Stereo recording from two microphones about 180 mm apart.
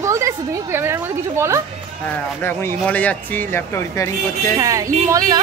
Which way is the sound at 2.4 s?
10° left (ahead or behind).